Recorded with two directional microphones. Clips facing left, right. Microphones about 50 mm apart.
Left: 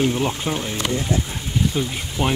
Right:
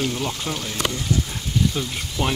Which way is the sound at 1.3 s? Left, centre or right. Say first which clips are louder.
Left 1 dB; centre.